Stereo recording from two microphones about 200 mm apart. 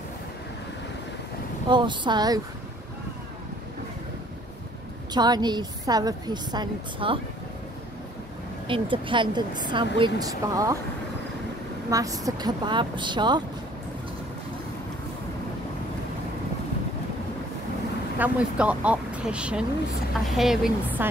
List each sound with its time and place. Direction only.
1.7 s speech: 25° right (ahead or behind)
5.1 s speech: 20° right (ahead or behind)
8.6 s speech: 25° right (ahead or behind)
11.9 s speech: 15° right (ahead or behind)
18.2 s speech: 5° right (ahead or behind)